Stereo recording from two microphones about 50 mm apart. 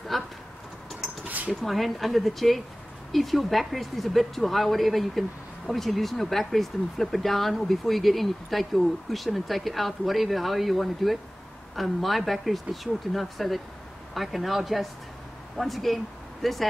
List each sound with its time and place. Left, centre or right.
0.1 s vehicle: centre
1.2 s cutlery: right
1.5 s speech: centre